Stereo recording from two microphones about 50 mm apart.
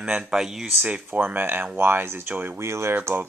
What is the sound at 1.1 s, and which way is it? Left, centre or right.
Speech, right.